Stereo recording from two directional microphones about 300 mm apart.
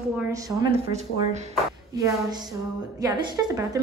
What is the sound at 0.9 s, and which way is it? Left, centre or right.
Speech, right.